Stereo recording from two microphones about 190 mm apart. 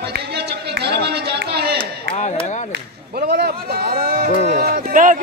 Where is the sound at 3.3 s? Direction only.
55° right (ahead or behind).